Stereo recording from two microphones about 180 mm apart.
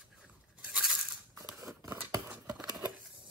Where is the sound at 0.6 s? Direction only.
5° right (ahead or behind).